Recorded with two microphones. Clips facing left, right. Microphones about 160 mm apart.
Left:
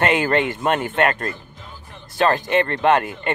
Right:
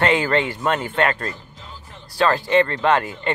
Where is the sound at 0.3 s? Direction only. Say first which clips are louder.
Left 1 dB; 55° left (ahead or behind).